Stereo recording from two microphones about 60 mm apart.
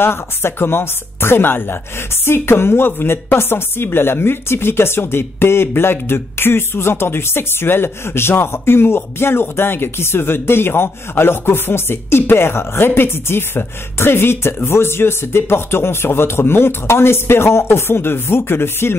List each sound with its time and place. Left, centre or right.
0.0 s speech: left